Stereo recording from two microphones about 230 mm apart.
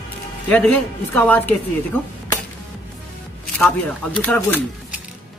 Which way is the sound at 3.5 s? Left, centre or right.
Centre.